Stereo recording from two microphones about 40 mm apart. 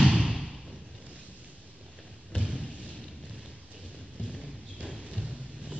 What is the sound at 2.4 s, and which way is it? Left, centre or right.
Thump, right.